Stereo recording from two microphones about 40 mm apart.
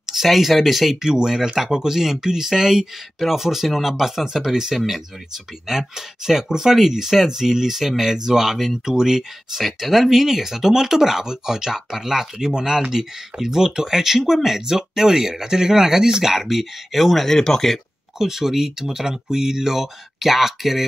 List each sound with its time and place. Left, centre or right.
0.0 s speech: centre
1.1 s speech: centre
18.2 s speech: centre